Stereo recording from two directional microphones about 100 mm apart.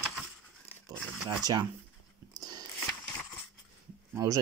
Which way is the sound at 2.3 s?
40° right (ahead or behind).